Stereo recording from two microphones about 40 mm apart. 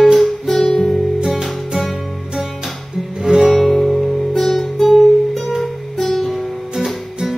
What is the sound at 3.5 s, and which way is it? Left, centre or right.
Music, centre.